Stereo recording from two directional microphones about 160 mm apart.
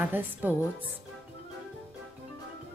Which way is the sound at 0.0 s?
10° right (ahead or behind).